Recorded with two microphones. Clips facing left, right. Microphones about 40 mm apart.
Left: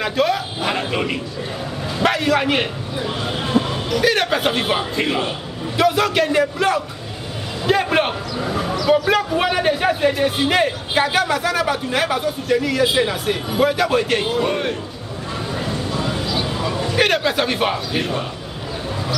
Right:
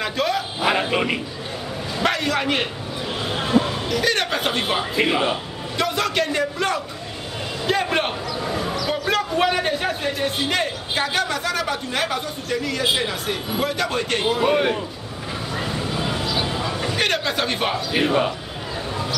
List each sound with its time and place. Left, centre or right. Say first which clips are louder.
0.0 s a man's voice: left 4 dB; centre
2.0 s a man's voice: left 4 dB; centre
5.0 s a man's voice: right 1 dB; centre
5.8 s a man's voice: left 5 dB; centre
15.5 s a sound: left 1 dB; centre
16.9 s a man's voice: left 6 dB; centre
18.0 s a man's voice: right 5 dB; right